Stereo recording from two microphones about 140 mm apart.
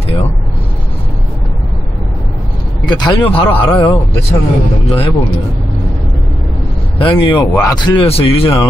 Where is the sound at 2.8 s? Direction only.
30° left (ahead or behind).